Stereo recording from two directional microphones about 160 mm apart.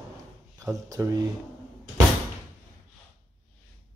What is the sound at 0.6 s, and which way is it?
Speech, 20° right (ahead or behind).